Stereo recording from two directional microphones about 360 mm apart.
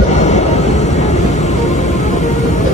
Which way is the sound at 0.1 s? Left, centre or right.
Centre.